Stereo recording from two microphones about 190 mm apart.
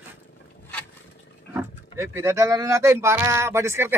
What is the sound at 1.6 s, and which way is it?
Speech, 15° right (ahead or behind).